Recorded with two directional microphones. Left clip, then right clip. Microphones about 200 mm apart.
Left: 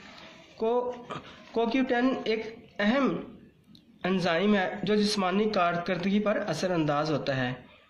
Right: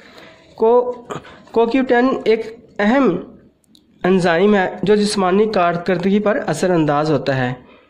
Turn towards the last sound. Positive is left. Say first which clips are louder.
# right 11 dB
turn(degrees=-50)  # may be behind; listen again after turning